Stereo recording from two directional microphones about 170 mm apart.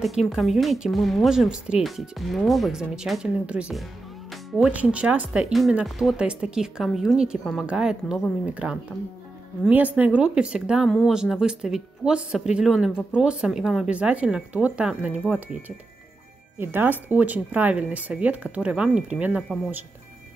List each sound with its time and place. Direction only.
0.0 s speech: centre (ahead or behind)